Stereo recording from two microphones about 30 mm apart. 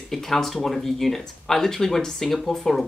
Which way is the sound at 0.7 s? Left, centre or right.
Centre.